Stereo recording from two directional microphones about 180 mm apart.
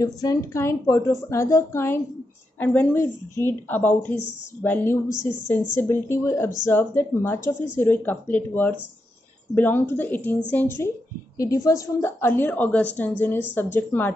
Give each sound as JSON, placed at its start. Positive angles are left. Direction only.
{"t": 0.0, "sound": "a woman's voice", "side_deg": 20}